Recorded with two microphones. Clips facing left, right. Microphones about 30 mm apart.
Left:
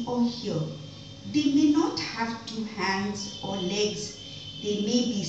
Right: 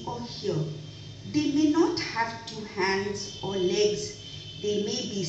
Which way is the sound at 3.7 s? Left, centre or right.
Left.